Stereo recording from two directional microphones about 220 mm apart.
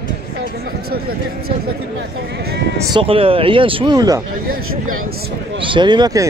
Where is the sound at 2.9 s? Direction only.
25° right (ahead or behind).